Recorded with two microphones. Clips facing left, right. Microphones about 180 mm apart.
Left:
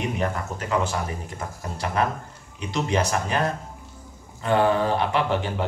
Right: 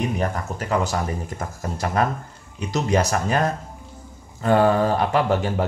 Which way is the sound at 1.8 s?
45° right (ahead or behind).